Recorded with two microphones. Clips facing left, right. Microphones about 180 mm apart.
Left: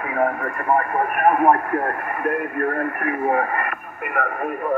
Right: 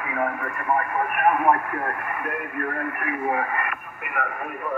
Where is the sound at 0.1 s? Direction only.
40° left (ahead or behind).